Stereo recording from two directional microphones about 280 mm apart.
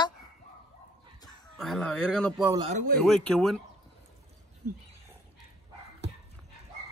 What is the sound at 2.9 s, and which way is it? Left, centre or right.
Speech, centre.